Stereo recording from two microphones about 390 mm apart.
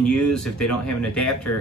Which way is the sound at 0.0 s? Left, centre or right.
Left.